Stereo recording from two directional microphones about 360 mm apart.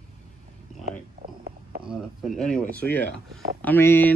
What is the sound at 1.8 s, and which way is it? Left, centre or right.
Speech, centre.